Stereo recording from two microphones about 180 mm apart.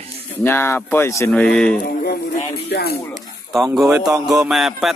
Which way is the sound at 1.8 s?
60° left (ahead or behind).